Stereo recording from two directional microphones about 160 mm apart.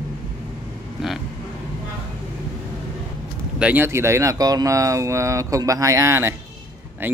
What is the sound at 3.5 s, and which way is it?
Speech, 10° right (ahead or behind).